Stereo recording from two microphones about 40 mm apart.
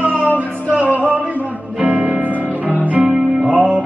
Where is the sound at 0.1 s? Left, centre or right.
Left.